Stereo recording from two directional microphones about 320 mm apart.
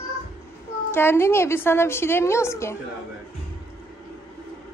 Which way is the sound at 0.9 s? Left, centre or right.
Centre.